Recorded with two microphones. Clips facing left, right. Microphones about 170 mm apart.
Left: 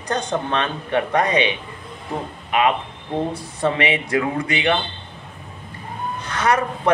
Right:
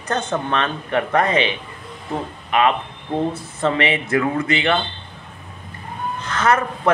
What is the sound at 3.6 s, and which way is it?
Speech, 15° left (ahead or behind).